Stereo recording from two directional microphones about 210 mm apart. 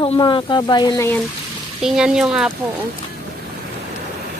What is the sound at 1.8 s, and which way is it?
Speech, 5° right (ahead or behind).